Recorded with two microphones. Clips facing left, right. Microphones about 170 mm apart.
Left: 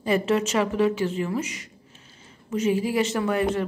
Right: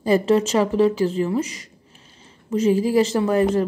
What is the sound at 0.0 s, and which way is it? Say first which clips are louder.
A woman's voice: right 5 dB; 35° right (ahead or behind).